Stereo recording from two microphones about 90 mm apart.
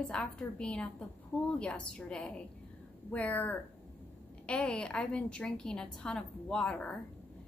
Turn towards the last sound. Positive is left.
turn(degrees=10)  # may be behind; listen again after turning